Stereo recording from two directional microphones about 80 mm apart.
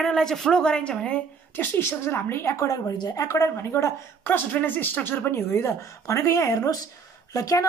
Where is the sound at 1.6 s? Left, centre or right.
Left.